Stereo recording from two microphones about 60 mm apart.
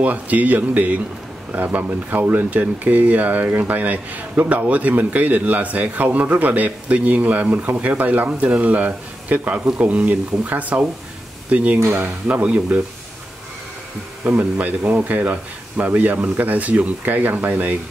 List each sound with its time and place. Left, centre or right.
0.0 s a man's voice: right
11.8 s speech: right
12.3 s a man's voice: right
14.2 s a man's voice: right